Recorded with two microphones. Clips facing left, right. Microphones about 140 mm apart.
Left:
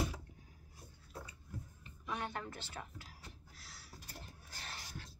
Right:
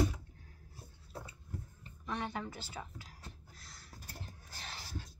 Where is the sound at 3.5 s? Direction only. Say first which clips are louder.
Right 1 dB; 5° left (ahead or behind).